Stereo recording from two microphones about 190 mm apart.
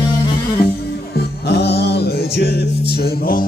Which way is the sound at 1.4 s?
60° left (ahead or behind).